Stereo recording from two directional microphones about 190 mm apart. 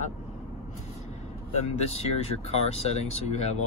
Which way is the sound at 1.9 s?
35° left (ahead or behind).